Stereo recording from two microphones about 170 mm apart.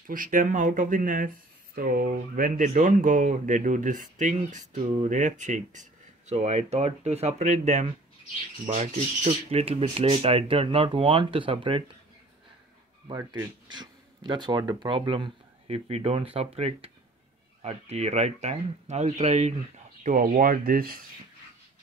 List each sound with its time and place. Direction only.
0.0 s speech: 50° right (ahead or behind); by 11.8 s 30° right (ahead or behind)
13.1 s speech: 20° right (ahead or behind); by 21.0 s 60° right (ahead or behind)